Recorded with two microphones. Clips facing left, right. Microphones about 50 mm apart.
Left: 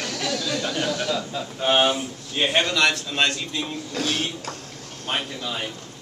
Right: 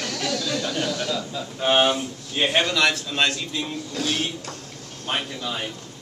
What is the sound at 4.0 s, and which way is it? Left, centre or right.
Speech, left.